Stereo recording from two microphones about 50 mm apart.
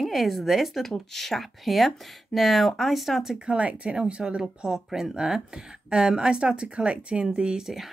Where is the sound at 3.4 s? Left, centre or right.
Right.